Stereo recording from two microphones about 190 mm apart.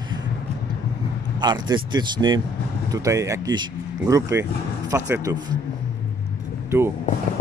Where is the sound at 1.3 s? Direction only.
25° right (ahead or behind).